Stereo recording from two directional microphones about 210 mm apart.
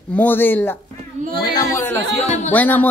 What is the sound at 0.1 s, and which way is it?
Speech, 10° left (ahead or behind).